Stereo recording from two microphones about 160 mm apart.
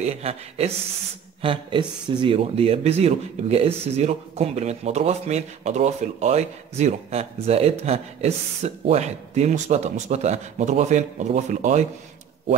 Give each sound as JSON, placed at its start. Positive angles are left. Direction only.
{"t": 0.0, "sound": "speech", "side_deg": -40}